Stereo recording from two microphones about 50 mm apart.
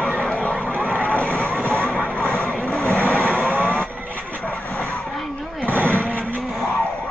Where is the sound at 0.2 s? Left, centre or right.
Left.